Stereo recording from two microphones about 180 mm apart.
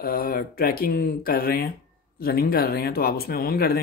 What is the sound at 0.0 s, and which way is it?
Speech, 55° left (ahead or behind).